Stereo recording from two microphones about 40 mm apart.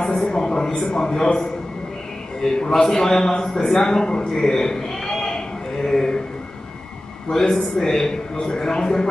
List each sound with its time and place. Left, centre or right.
0.0 s a sound: centre
2.4 s a man's voice: centre
7.2 s a man's voice: centre